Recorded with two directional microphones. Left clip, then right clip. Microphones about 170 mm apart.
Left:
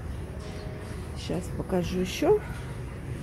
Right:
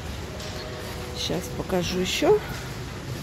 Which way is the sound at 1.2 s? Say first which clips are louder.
Right 5 dB; 20° left (ahead or behind).